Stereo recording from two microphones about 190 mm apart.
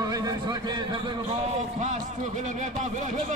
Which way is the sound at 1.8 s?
40° right (ahead or behind).